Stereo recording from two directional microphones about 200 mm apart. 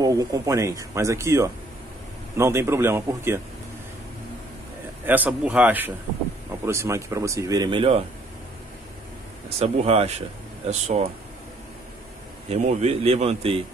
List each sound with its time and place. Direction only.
0.0 s speech: 20° right (ahead or behind)
5.0 s speech: 10° right (ahead or behind); by 8.0 s 25° right (ahead or behind)
9.6 s speech: 30° right (ahead or behind)
12.4 s speech: 30° right (ahead or behind)